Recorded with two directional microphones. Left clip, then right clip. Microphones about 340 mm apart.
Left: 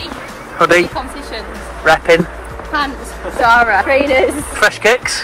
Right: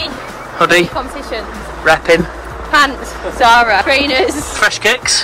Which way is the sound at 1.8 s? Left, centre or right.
Centre.